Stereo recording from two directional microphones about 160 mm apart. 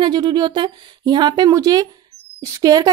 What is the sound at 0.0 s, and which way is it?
Speech, 30° right (ahead or behind).